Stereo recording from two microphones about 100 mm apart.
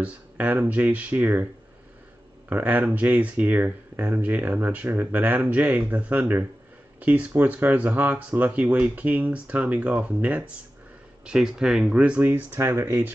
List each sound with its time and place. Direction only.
0.0 s speech: 15° right (ahead or behind)
2.5 s speech: 15° right (ahead or behind)